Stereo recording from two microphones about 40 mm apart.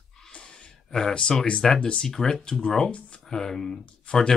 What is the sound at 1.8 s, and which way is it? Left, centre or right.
Speech, left.